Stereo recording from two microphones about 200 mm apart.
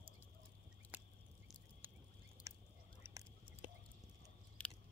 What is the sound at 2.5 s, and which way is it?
Duck, 15° right (ahead or behind).